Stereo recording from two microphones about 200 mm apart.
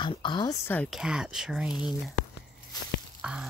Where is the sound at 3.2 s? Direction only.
5° right (ahead or behind).